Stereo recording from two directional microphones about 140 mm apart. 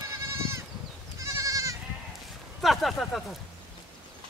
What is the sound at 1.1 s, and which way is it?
Goat, 20° right (ahead or behind).